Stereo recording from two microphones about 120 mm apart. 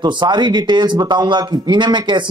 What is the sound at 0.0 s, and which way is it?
Speech, 40° right (ahead or behind).